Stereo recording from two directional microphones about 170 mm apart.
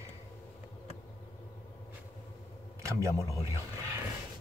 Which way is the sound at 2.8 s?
15° right (ahead or behind).